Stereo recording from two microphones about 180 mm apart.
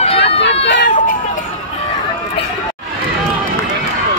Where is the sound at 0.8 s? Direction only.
45° left (ahead or behind).